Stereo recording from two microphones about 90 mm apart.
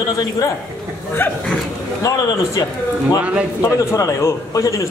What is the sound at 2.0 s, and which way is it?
Speech, 40° left (ahead or behind).